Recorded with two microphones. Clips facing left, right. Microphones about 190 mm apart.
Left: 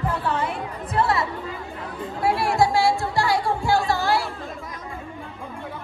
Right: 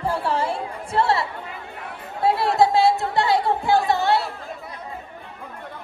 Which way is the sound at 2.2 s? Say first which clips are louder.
Right 2 dB; 20° right (ahead or behind).